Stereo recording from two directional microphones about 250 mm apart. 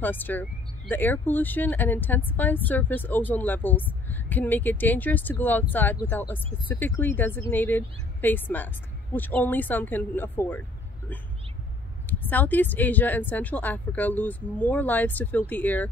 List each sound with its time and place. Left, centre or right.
0.0 s speech: centre
12.1 s speech: centre